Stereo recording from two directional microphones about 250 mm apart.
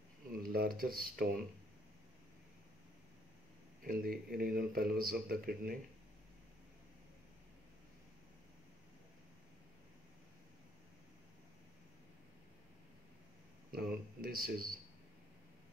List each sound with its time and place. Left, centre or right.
0.4 s speech: right
3.8 s speech: right
13.7 s speech: right